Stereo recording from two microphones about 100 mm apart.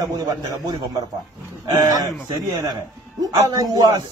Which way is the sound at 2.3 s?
35° right (ahead or behind).